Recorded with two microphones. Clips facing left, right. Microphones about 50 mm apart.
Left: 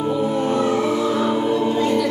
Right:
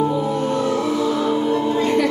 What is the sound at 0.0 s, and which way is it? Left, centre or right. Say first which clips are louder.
Music: right 1 dB; centre.